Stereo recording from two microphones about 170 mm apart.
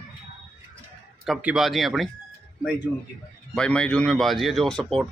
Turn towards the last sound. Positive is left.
turn(degrees=0)  # may be behind; listen again after turning